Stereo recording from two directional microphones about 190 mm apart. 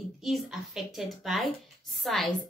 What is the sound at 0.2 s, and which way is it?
A woman's voice, centre (ahead or behind).